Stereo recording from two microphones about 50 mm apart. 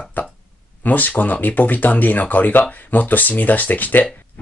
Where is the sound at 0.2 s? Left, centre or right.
Left.